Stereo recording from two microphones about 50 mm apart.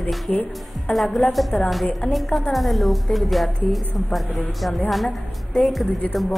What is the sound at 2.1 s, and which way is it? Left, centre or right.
A woman's voice, centre.